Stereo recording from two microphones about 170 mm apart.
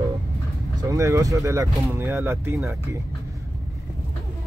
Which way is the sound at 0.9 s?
20° right (ahead or behind).